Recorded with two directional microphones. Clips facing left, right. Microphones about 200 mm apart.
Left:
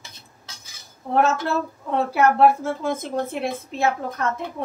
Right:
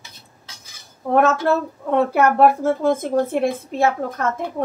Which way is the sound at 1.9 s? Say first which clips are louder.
Right 3 dB; 55° right (ahead or behind).